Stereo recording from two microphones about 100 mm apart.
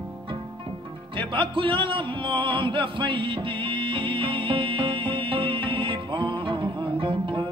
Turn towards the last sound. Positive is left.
turn(degrees=-60)  # may be behind; listen again after turning